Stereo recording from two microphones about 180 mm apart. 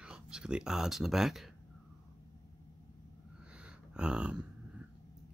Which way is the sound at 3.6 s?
5° right (ahead or behind).